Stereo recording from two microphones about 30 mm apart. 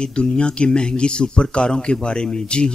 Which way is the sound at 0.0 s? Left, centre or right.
Left.